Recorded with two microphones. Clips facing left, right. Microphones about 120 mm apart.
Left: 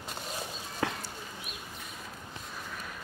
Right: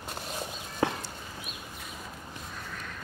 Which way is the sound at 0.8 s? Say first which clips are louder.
Right 4 dB; 25° right (ahead or behind).